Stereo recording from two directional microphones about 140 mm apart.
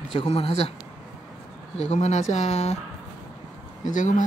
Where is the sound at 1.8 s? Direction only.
50° left (ahead or behind).